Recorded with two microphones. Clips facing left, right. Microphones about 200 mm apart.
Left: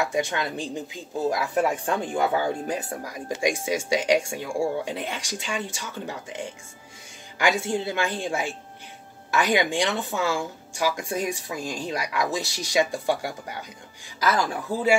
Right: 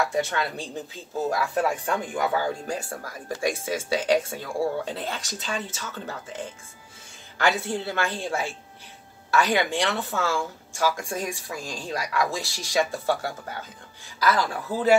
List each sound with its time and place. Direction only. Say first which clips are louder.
0.1 s speech: even; 15° left (ahead or behind)